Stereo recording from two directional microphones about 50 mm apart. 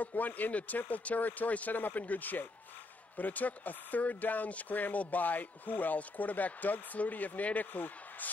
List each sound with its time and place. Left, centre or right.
0.0 s speech: left